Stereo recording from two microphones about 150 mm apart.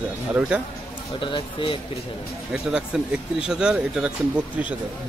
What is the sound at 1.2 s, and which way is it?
Speech, 35° left (ahead or behind).